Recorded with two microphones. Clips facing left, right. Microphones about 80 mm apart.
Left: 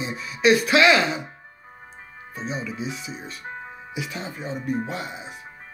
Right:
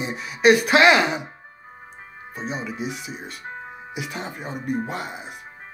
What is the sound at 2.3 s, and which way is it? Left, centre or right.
Speech, right.